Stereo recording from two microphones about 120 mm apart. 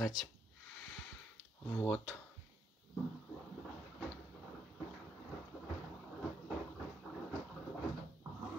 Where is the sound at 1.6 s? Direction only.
20° left (ahead or behind).